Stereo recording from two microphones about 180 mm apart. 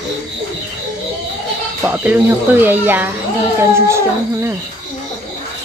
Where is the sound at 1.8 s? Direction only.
10° right (ahead or behind).